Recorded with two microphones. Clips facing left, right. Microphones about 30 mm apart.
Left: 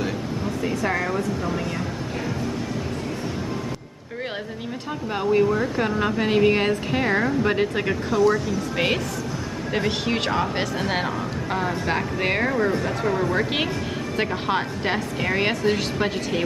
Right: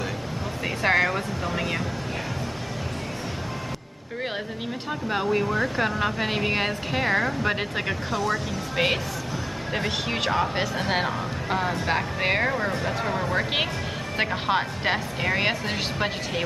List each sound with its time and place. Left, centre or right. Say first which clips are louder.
0.8 s speech: right 5 dB; right
5.1 s speech: left 4 dB; centre